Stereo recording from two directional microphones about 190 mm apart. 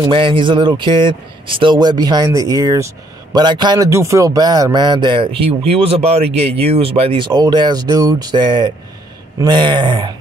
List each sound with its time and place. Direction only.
0.0 s speech: 25° right (ahead or behind)